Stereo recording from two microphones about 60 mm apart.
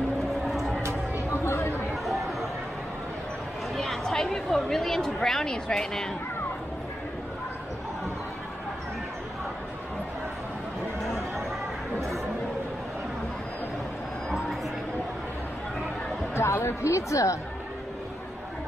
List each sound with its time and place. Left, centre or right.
0.5 s music: centre
1.3 s a sound: left
3.7 s a woman's voice: centre
16.3 s speech: left